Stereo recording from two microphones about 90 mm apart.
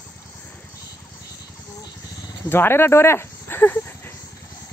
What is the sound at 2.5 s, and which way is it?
Speech, 25° left (ahead or behind).